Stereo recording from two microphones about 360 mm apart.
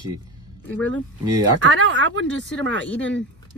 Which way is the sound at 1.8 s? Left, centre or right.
Right.